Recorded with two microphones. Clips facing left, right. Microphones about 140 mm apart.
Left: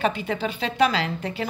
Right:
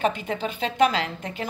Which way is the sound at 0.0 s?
45° right (ahead or behind).